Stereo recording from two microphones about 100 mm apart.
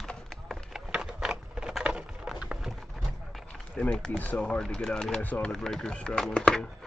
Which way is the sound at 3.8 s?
10° left (ahead or behind).